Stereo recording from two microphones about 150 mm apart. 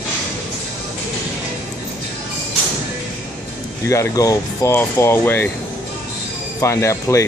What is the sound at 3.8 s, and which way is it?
Speech, 20° left (ahead or behind).